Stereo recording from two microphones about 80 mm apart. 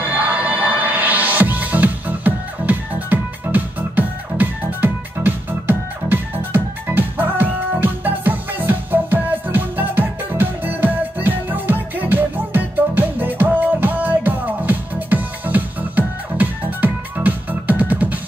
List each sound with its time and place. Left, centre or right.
0.0 s music: right